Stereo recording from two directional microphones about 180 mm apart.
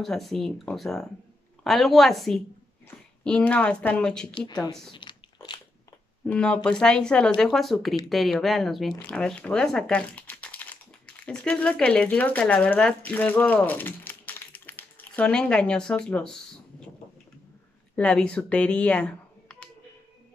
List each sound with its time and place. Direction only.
0.0 s speech: centre (ahead or behind)
4.3 s a woman's voice: 25° left (ahead or behind)
4.9 s a sound: 25° left (ahead or behind)
6.2 s speech: 5° left (ahead or behind)
17.9 s speech: 5° left (ahead or behind)